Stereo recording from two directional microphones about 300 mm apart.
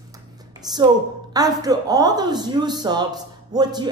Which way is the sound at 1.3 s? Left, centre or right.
Centre.